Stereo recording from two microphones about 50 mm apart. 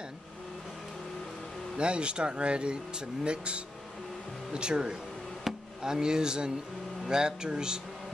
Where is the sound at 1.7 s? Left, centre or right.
Right.